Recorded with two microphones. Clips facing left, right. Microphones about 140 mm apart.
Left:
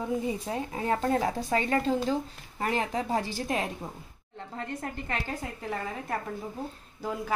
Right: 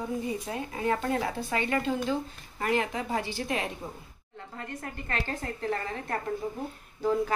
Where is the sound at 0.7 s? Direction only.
35° left (ahead or behind).